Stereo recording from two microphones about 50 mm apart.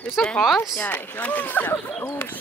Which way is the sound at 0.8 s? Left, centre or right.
Left.